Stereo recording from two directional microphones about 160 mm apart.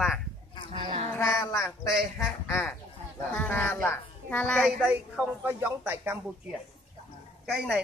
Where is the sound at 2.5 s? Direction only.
15° left (ahead or behind); by 6.2 s 10° right (ahead or behind).